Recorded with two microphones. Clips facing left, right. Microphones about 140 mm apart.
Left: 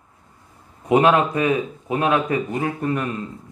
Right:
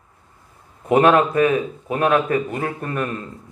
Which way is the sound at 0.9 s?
15° left (ahead or behind).